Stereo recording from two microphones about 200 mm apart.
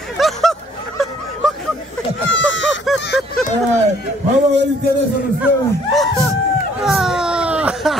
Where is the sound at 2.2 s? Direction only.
70° left (ahead or behind).